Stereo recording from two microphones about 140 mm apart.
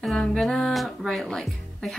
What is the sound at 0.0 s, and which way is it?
Speech, 5° left (ahead or behind).